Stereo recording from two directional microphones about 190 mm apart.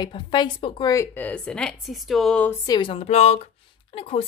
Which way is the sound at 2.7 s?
25° left (ahead or behind).